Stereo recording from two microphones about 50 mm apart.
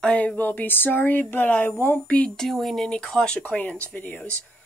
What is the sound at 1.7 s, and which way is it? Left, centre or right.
Speech, left.